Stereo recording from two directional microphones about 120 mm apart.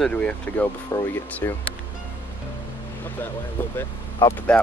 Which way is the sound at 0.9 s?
25° left (ahead or behind).